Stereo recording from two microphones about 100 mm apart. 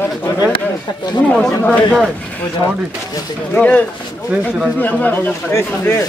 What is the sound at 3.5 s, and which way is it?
A man's voice, 15° left (ahead or behind).